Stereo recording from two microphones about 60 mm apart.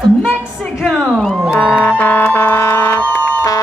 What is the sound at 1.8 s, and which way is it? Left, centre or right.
Emergency vehicle, left.